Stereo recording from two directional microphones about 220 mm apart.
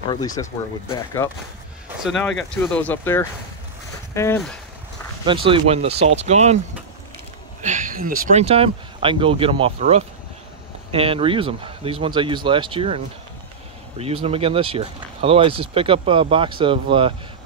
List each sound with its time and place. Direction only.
0.1 s speech: 15° left (ahead or behind)
2.0 s speech: 5° left (ahead or behind)
5.2 s speech: 25° right (ahead or behind)
7.6 s speech: 35° right (ahead or behind)